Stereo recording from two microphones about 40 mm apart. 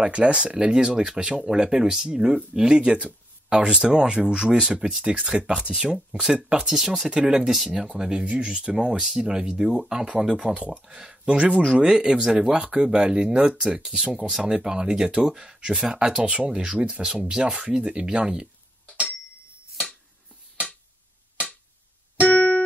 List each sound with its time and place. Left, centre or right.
0.0 s speech: right
6.7 s speech: centre
7.1 s speech: right
13.6 s speech: centre
22.3 s music: left